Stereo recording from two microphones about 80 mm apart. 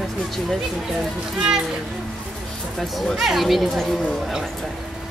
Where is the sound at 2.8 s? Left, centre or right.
Centre.